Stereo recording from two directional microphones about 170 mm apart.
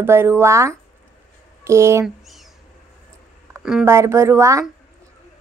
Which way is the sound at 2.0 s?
Centre (ahead or behind).